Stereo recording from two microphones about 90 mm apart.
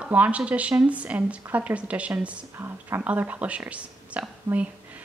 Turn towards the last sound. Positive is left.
turn(degrees=-15)  # may be behind; listen again after turning